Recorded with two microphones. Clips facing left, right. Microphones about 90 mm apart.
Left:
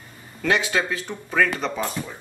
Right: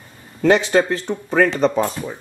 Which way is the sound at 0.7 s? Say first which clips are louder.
Right 8 dB; 40° right (ahead or behind).